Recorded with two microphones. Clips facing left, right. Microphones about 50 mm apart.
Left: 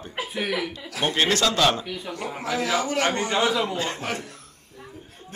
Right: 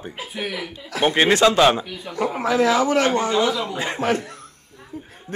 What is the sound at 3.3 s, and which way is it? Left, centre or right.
Speech, centre.